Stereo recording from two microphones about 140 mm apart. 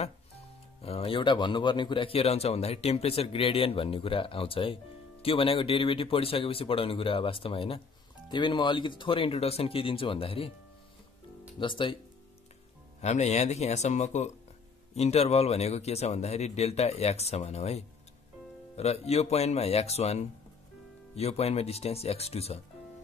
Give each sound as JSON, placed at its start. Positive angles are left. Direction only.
{"t": 0.8, "sound": "speech", "side_deg": 40}
{"t": 11.6, "sound": "speech", "side_deg": 35}
{"t": 13.0, "sound": "speech", "side_deg": 55}